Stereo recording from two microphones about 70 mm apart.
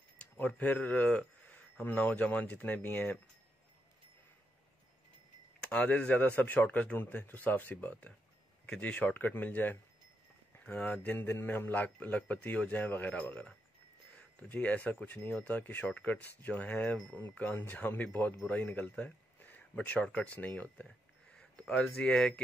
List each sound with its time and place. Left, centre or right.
0.2 s speech: centre
5.7 s speech: centre
11.1 s speech: left; by 22.4 s centre